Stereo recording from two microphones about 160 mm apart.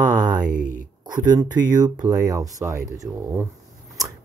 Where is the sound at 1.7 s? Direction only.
25° right (ahead or behind).